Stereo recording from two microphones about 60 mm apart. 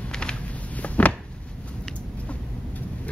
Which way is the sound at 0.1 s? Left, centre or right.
Centre.